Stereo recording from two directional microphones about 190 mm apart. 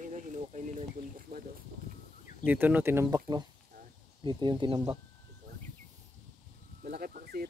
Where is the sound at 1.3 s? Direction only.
55° right (ahead or behind).